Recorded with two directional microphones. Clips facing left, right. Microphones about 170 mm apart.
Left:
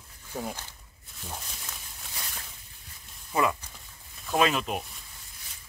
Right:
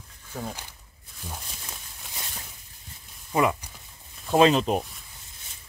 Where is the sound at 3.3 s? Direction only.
20° right (ahead or behind).